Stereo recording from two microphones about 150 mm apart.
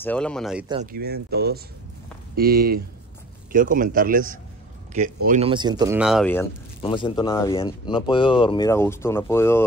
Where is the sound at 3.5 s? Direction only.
65° right (ahead or behind).